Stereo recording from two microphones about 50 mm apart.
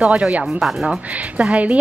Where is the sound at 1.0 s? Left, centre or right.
Right.